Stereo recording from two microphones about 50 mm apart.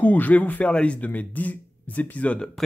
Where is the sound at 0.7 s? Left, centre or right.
Left.